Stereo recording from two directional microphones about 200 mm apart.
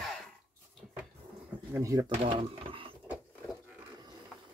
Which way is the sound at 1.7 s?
15° right (ahead or behind).